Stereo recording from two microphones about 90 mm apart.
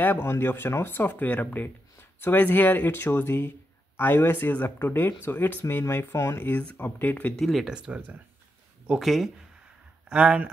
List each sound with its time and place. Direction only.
0.0 s speech: 25° left (ahead or behind)
7.3 s speech: 5° left (ahead or behind)
7.6 s speech: 10° right (ahead or behind)
10.0 s speech: 10° right (ahead or behind)